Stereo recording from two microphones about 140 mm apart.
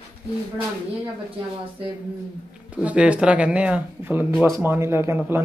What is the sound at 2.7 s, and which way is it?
Speech, 10° right (ahead or behind).